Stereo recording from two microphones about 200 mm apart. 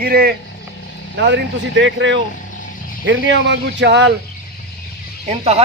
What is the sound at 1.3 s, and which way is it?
Speech, 65° right (ahead or behind).